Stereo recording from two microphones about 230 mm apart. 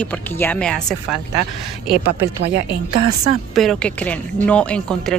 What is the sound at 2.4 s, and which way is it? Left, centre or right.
Speech, right.